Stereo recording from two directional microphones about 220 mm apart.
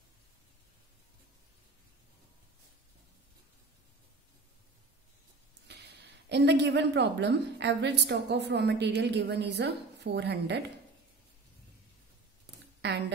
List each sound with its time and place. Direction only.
5.7 s a woman's voice: 50° right (ahead or behind)